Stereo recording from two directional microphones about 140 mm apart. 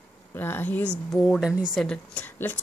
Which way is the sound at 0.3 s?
15° left (ahead or behind).